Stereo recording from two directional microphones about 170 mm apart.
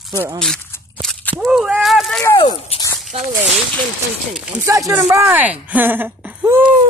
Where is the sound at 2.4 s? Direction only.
30° left (ahead or behind).